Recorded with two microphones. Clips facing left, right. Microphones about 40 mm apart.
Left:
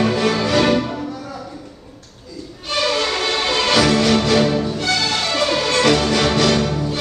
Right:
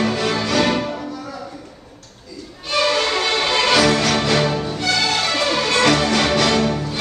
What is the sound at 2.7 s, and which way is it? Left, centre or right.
Music, centre.